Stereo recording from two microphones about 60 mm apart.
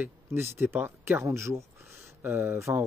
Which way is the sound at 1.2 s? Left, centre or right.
Right.